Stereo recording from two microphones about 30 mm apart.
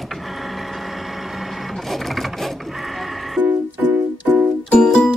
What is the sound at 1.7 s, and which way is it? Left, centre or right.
Music, centre.